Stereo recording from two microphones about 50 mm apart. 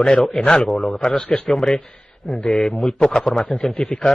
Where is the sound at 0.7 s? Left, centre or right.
Centre.